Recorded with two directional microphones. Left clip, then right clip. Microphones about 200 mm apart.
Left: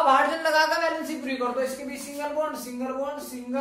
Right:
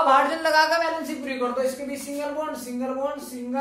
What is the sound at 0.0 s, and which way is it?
A woman's voice, 25° right (ahead or behind).